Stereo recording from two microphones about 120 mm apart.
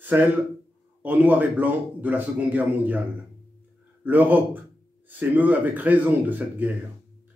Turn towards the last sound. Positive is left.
turn(degrees=-15)  # may be behind; listen again after turning